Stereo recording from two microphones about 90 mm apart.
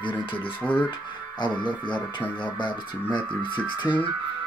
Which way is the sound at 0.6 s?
15° left (ahead or behind).